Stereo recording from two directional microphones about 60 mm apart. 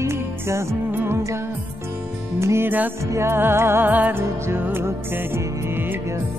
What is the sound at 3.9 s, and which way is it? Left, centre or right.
Music, right.